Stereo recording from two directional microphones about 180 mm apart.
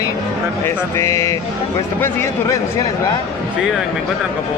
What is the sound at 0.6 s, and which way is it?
Speech, 15° left (ahead or behind).